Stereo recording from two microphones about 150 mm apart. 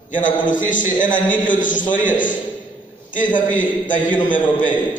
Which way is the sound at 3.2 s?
60° left (ahead or behind).